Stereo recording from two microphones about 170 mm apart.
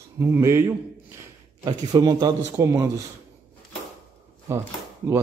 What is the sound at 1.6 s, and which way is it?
Speech, 25° right (ahead or behind).